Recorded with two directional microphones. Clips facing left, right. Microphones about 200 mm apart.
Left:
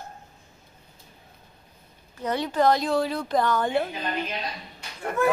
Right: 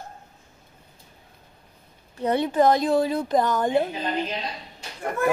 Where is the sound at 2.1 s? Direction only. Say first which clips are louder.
Right 4 dB; 25° right (ahead or behind).